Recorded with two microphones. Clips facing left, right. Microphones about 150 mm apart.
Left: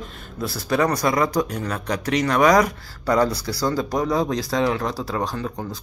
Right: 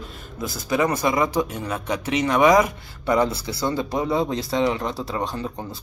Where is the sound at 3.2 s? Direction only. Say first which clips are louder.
Left 3 dB; 25° right (ahead or behind).